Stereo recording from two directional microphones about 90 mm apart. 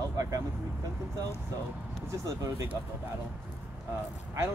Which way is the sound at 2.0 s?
35° right (ahead or behind).